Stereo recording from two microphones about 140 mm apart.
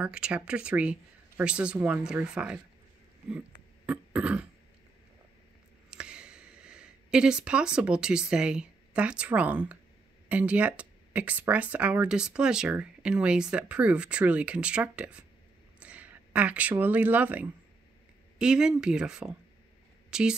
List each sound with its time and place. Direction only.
0.0 s speech: 10° right (ahead or behind)
3.3 s throat clearing: 10° right (ahead or behind)
5.9 s speech: 5° right (ahead or behind)